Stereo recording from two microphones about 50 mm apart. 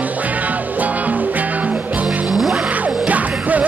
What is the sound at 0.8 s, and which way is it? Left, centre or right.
Music, right.